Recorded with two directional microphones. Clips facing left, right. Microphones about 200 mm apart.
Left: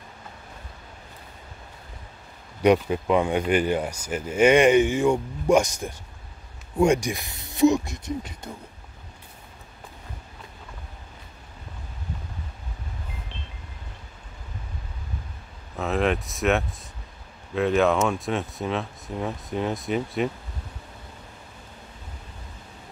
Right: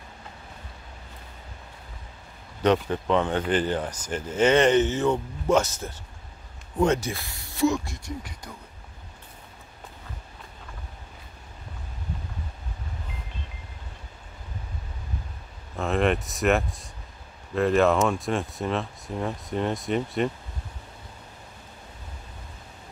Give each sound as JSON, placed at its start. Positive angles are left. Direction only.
{"t": 2.6, "sound": "speech", "side_deg": 10}
{"t": 15.7, "sound": "speech", "side_deg": 0}